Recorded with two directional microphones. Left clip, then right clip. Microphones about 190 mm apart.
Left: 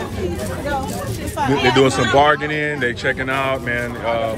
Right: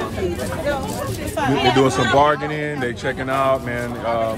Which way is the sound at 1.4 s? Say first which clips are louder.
Left 1 dB; 5° left (ahead or behind).